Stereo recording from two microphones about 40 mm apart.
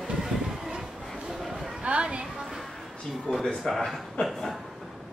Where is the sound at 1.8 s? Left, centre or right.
Right.